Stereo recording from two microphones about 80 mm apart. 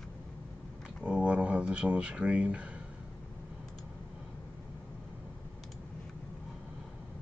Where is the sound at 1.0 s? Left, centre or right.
Centre.